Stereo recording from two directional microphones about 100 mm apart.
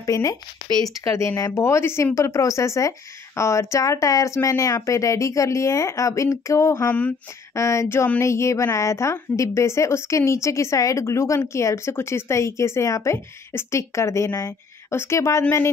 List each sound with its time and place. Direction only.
0.0 s a woman's voice: 30° left (ahead or behind)